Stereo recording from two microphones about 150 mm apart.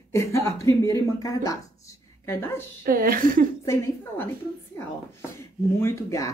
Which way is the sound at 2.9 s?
70° right (ahead or behind).